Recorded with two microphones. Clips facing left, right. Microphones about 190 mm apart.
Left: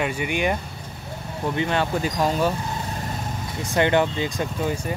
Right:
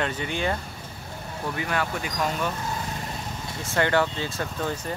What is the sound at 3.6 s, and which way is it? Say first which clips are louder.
Speech: left 3 dB; 20° left (ahead or behind).